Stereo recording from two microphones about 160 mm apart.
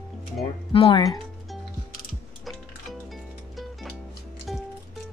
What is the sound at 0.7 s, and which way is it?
Speech, 35° left (ahead or behind).